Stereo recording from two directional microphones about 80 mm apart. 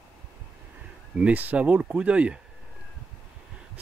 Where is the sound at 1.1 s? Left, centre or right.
Centre.